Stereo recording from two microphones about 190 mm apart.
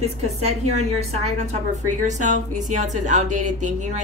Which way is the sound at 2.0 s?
40° right (ahead or behind).